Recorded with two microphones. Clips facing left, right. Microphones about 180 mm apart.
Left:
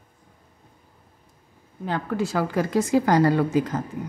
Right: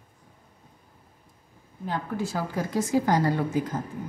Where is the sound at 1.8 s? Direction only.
75° left (ahead or behind).